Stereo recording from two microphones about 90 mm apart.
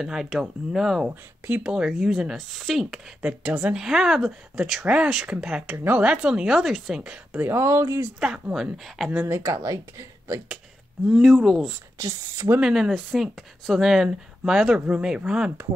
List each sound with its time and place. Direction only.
0.0 s speech: 5° right (ahead or behind)
1.0 s speech: 10° right (ahead or behind)
3.2 s speech: 15° right (ahead or behind)
7.4 s speech: 30° right (ahead or behind)
8.2 s speech: 5° right (ahead or behind)
9.3 s speech: 35° right (ahead or behind)
11.1 s speech: centre (ahead or behind)
12.0 s speech: 35° right (ahead or behind)
12.5 s speech: 10° right (ahead or behind)